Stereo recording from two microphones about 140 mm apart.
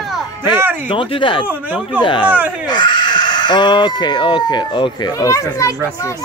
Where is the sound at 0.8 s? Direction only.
35° left (ahead or behind).